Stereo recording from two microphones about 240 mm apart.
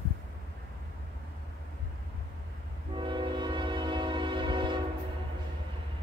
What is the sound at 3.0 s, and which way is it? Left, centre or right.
Music, centre.